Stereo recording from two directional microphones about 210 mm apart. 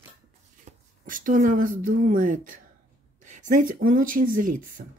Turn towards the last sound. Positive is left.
turn(degrees=-40)  # may be behind; listen again after turning